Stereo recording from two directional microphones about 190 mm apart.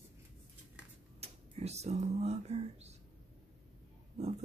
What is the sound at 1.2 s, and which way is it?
Whispering, 35° right (ahead or behind).